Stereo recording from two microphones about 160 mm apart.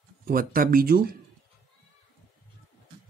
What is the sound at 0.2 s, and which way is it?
Speech, 65° right (ahead or behind).